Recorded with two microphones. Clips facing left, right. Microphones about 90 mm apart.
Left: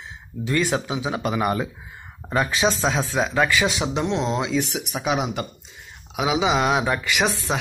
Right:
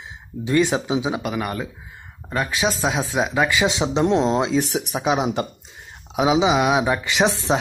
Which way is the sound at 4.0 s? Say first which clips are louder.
Right 6 dB; 40° right (ahead or behind).